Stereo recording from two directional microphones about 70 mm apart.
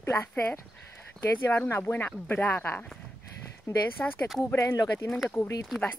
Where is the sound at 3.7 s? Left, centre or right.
Left.